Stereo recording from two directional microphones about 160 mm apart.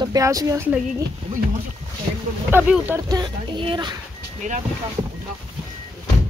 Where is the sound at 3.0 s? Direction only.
25° right (ahead or behind).